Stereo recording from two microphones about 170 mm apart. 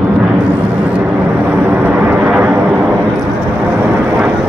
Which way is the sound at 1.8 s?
5° right (ahead or behind).